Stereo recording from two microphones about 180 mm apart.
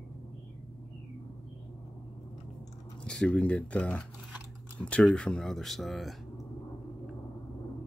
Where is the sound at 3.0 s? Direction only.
5° left (ahead or behind).